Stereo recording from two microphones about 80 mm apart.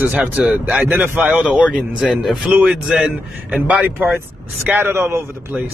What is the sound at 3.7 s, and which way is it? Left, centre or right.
Speech, right.